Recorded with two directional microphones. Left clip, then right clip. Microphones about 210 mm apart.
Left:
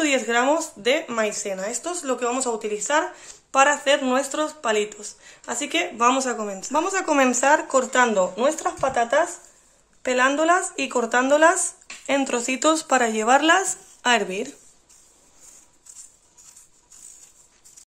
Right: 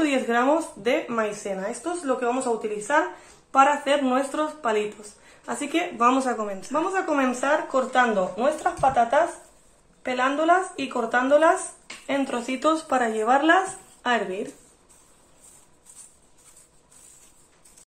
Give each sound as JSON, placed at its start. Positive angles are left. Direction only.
{"t": 0.0, "sound": "a woman's voice", "side_deg": 35}